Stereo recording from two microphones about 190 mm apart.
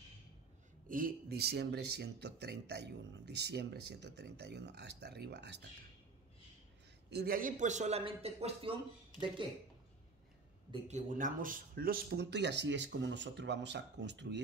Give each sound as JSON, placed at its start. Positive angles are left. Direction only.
{"t": 0.8, "sound": "speech", "side_deg": -45}
{"t": 7.1, "sound": "a man's voice", "side_deg": -55}
{"t": 10.7, "sound": "speech", "side_deg": -40}